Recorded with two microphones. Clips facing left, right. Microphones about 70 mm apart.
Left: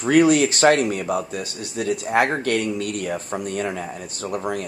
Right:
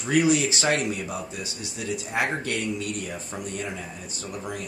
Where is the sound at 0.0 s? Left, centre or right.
Left.